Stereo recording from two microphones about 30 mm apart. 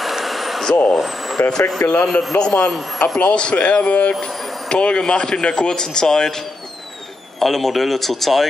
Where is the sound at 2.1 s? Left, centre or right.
Left.